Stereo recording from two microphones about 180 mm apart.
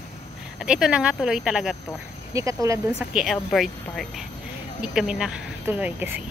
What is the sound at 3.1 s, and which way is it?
Speech, centre (ahead or behind).